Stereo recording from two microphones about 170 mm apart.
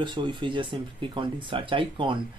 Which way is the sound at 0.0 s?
25° right (ahead or behind).